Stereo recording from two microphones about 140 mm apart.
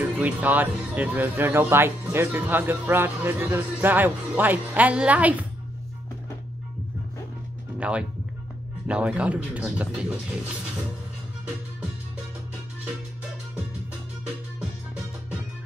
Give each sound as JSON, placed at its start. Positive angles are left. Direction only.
{"t": 0.0, "sound": "speech", "side_deg": -10}
{"t": 8.8, "sound": "speech", "side_deg": -10}